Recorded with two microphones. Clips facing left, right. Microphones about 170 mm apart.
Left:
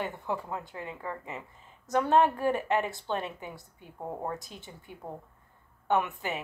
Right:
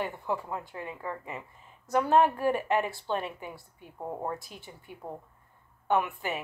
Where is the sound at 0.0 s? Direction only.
20° left (ahead or behind).